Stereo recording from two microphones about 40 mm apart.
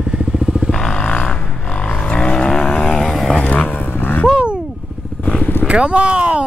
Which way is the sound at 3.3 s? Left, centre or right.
Left.